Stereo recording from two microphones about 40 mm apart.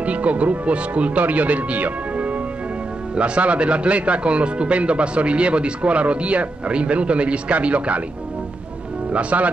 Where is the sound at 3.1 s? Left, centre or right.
Right.